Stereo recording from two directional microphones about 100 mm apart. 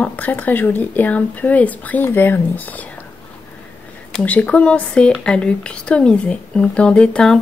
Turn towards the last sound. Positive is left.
turn(degrees=10)  # may be behind; listen again after turning